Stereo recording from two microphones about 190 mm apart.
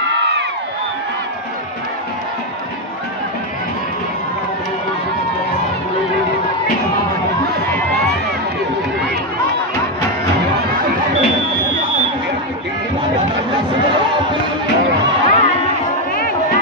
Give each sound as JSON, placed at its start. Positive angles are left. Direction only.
{"t": 15.2, "sound": "music", "side_deg": 35}